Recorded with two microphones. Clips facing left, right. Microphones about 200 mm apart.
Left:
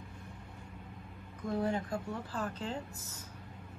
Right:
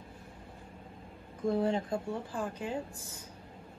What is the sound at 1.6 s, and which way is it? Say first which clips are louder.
Speech: right 3 dB; 25° right (ahead or behind).